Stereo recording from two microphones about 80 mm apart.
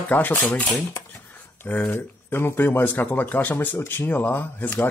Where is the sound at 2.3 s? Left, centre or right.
Left.